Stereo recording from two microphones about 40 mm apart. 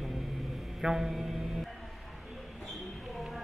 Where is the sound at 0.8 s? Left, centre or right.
Centre.